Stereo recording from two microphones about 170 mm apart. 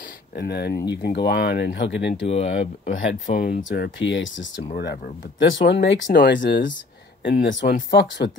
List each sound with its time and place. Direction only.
0.3 s speech: 70° left (ahead or behind)
0.9 s speech: 85° left
2.2 s speech: 35° left (ahead or behind); by 4.6 s 90° left
4.7 s speech: 80° left
7.2 s speech: 70° left (ahead or behind)